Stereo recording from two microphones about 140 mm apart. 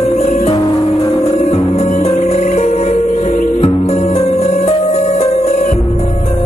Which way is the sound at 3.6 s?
50° left (ahead or behind).